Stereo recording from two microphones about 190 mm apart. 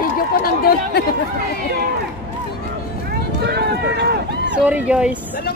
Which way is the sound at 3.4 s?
60° right (ahead or behind).